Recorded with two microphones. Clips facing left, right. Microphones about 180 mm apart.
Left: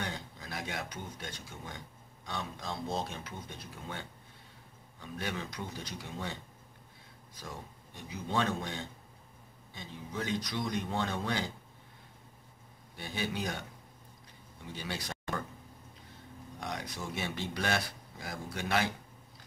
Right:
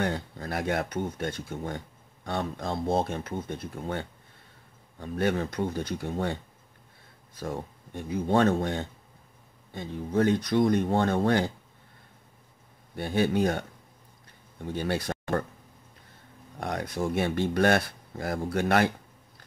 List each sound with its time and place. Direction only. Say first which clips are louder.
0.0 s speech: right 10 dB; 55° right (ahead or behind)
12.9 s speech: right 11 dB; 55° right (ahead or behind)
16.5 s speech: right 9 dB; 55° right (ahead or behind)